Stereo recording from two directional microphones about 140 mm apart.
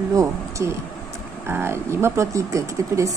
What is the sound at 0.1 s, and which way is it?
Speech, 20° right (ahead or behind).